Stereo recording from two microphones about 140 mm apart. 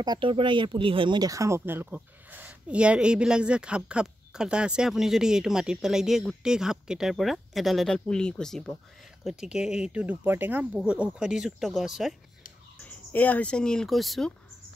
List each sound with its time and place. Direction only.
0.0 s speech: 35° right (ahead or behind); by 12.2 s centre (ahead or behind)
12.8 s speech: 10° left (ahead or behind)